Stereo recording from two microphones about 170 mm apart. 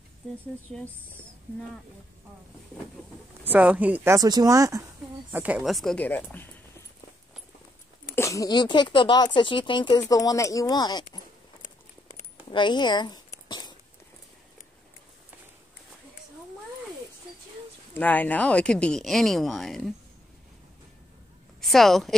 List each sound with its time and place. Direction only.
3.4 s speech: 10° right (ahead or behind); by 6.5 s 10° left (ahead or behind)
8.2 s speech: 20° left (ahead or behind)
12.4 s speech: 25° left (ahead or behind)
13.5 s a sound: 25° left (ahead or behind)
17.9 s a woman's voice: 10° left (ahead or behind)
21.5 s a woman's voice: centre (ahead or behind)